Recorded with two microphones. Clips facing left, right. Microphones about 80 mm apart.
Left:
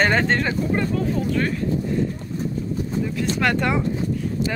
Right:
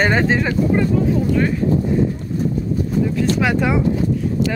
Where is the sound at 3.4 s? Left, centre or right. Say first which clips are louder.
Even; centre.